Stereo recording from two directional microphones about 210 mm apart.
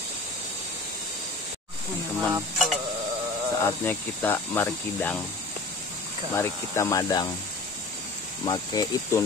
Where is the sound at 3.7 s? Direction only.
10° left (ahead or behind).